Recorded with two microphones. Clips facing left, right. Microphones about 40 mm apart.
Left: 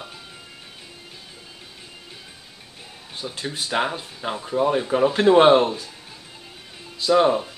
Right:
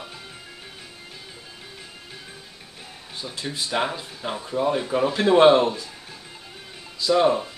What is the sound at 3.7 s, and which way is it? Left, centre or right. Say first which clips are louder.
Speech: left 2 dB; centre.